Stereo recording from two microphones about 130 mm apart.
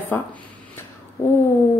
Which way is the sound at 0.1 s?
15° left (ahead or behind).